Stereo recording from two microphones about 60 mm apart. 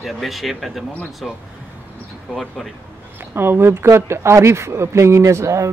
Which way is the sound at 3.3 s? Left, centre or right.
Right.